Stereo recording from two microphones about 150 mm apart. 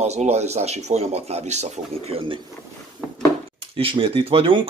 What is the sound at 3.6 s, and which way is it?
Speech, 35° right (ahead or behind).